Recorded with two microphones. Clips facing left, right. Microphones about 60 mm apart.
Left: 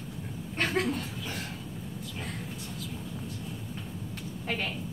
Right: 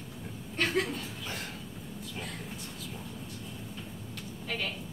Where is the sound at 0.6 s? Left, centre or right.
Left.